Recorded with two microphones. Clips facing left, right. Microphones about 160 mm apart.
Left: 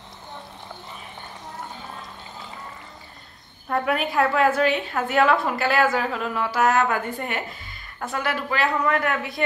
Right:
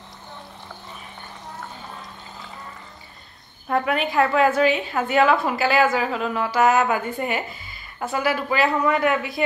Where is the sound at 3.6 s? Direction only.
Centre (ahead or behind).